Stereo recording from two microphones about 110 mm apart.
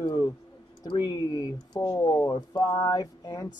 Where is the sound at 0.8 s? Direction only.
35° left (ahead or behind).